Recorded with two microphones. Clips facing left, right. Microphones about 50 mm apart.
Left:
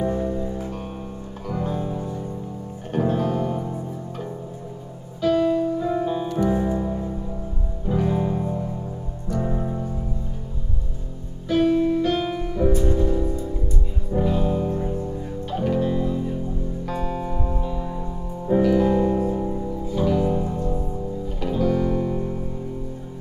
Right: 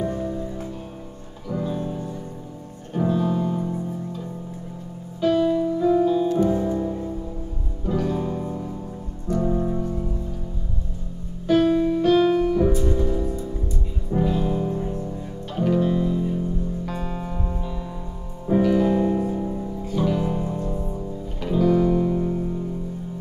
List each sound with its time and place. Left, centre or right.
0.0 s music: centre
1.5 s music: left
5.2 s music: centre
5.9 s music: left
6.5 s music: centre
11.5 s music: centre
20.0 s music: centre